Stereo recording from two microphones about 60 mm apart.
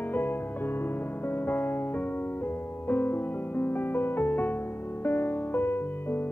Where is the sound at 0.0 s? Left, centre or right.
Left.